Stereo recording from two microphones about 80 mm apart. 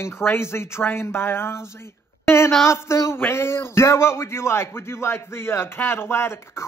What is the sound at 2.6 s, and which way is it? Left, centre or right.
Speech, left.